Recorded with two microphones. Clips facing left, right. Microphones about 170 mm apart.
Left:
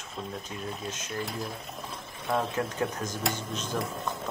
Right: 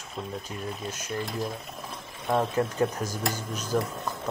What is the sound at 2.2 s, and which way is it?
Speech, 10° right (ahead or behind).